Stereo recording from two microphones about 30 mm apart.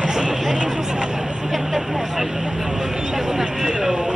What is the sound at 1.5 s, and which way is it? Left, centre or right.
Speech, centre.